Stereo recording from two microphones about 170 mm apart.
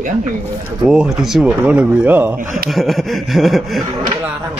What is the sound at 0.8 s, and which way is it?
Speech, 5° right (ahead or behind).